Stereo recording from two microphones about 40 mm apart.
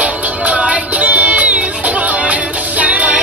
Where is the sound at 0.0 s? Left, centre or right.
Right.